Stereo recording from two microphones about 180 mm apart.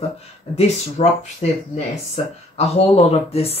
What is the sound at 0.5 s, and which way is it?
Speech, 35° left (ahead or behind).